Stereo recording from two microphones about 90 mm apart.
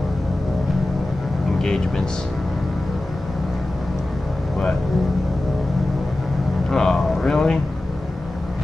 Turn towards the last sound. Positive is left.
turn(degrees=5)  # may be behind; listen again after turning